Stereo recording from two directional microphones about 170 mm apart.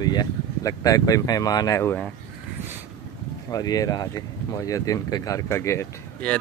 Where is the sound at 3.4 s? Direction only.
20° left (ahead or behind).